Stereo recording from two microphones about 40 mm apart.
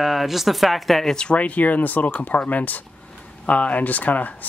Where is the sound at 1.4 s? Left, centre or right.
Left.